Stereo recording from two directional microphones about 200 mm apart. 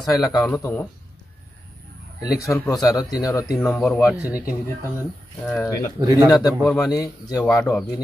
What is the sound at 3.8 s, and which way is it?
Speech, centre (ahead or behind).